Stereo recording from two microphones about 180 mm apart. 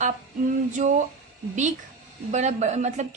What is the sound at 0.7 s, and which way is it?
Speech, 45° right (ahead or behind).